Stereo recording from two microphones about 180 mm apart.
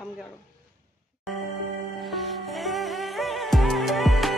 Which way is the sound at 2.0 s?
Centre (ahead or behind).